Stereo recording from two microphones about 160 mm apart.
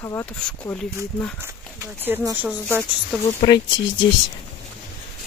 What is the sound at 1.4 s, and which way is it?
Speech, 15° right (ahead or behind).